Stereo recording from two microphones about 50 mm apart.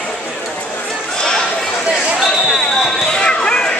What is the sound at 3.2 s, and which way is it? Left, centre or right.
Basketball bounce, centre.